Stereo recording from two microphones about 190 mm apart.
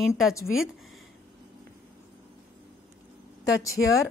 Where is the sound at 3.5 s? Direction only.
15° left (ahead or behind).